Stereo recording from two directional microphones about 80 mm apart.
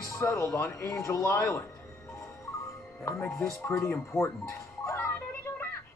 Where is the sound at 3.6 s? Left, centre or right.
Left.